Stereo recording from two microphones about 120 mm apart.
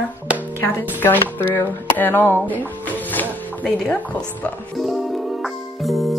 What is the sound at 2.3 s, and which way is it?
Speech, 15° right (ahead or behind).